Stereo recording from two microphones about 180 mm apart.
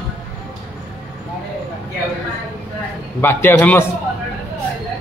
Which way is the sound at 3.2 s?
10° left (ahead or behind).